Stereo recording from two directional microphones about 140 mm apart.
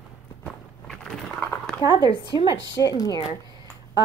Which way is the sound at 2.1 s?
35° left (ahead or behind).